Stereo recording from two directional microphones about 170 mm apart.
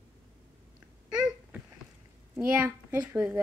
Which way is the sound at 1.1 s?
5° right (ahead or behind).